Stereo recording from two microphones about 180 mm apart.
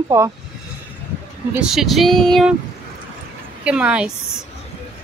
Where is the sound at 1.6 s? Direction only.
Centre (ahead or behind).